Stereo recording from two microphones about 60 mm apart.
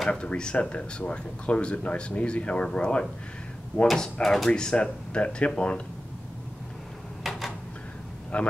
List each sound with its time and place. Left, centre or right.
0.1 s speech: centre
3.8 s speech: centre
4.5 s speech: centre
7.2 s a sound: centre
8.3 s speech: left